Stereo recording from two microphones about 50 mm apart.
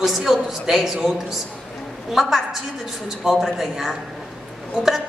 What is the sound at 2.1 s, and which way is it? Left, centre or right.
A woman's voice, centre.